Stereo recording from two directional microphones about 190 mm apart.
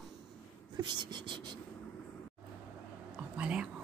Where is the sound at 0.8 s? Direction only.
25° right (ahead or behind).